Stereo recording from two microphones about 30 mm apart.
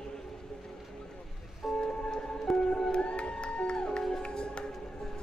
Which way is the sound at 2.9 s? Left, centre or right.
Left.